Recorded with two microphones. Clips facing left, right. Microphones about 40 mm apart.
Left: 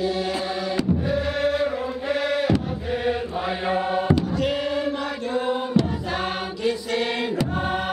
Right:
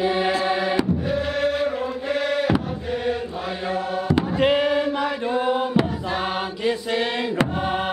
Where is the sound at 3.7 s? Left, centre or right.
Left.